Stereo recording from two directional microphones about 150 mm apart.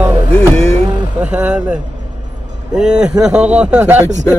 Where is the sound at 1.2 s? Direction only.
10° right (ahead or behind).